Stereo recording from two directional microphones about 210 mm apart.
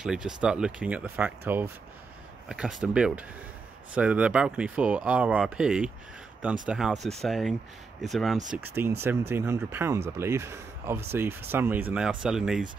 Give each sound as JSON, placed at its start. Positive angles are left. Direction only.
{"t": 0.0, "sound": "speech", "side_deg": -5}
{"t": 8.6, "sound": "speech", "side_deg": -10}